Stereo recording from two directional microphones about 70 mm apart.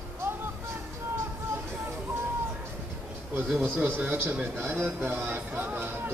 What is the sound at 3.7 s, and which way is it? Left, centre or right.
A man's voice, right.